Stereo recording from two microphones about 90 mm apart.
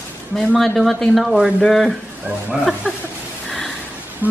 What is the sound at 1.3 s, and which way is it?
Speech, 10° right (ahead or behind).